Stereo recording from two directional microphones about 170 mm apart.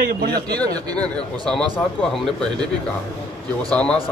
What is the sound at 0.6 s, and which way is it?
Speech, 20° right (ahead or behind).